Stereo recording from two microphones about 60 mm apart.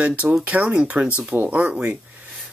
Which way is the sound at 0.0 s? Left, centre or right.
Right.